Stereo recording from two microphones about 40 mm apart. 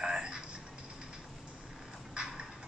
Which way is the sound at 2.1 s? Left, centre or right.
Right.